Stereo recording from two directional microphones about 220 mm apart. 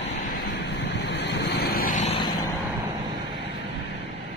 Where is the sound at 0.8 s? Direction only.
50° left (ahead or behind); by 2.3 s 30° left (ahead or behind).